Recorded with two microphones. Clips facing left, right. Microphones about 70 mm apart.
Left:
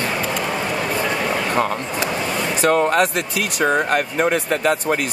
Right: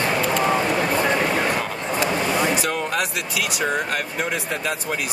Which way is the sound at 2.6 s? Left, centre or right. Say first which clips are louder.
Left 8 dB; left.